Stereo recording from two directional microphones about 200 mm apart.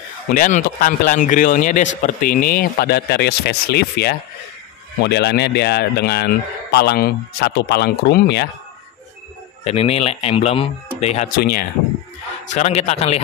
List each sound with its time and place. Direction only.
0.3 s speech: 40° left (ahead or behind)
9.7 s speech: 30° left (ahead or behind)
12.5 s speech: 30° left (ahead or behind)